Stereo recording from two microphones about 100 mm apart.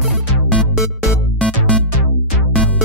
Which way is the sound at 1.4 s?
10° left (ahead or behind).